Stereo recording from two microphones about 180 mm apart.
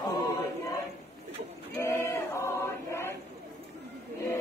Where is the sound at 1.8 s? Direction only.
15° left (ahead or behind).